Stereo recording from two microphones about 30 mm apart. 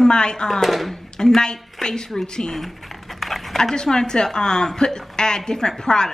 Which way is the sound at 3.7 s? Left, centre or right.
Left.